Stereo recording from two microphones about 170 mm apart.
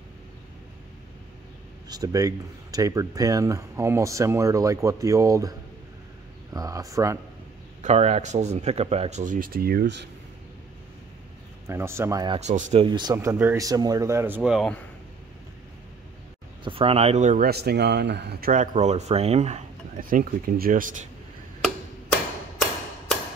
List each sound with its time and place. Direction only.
1.9 s speech: 20° right (ahead or behind)
6.5 s speech: 20° right (ahead or behind)
7.8 s speech: 40° right (ahead or behind); by 10.0 s 80° right
11.6 s speech: 15° right (ahead or behind)
12.4 s speech: 45° right (ahead or behind)
12.8 s speech: 25° right (ahead or behind); by 14.7 s 5° right (ahead or behind)
16.6 s speech: 35° right (ahead or behind)
17.5 s speech: 70° right (ahead or behind)
18.5 s speech: 45° right (ahead or behind)
20.0 s speech: 55° right (ahead or behind)